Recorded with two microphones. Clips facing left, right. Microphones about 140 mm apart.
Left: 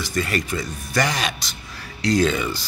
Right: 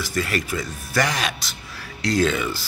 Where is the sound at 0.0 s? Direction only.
5° right (ahead or behind).